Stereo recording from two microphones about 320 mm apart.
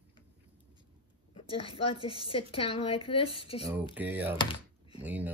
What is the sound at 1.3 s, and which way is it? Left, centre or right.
A woman's voice, centre.